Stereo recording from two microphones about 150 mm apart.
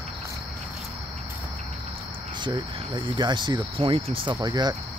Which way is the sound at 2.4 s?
30° right (ahead or behind).